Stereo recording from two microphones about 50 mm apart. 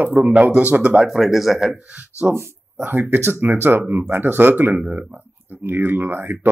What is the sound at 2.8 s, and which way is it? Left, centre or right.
Speech, right.